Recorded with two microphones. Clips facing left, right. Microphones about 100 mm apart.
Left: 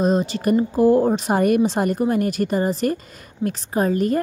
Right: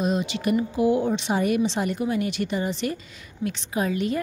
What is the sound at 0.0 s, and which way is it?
A woman's voice, 40° left (ahead or behind).